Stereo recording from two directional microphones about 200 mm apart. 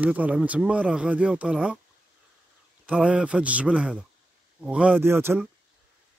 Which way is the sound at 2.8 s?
5° right (ahead or behind).